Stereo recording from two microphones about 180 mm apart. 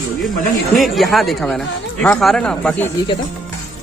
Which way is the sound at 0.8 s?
Centre (ahead or behind).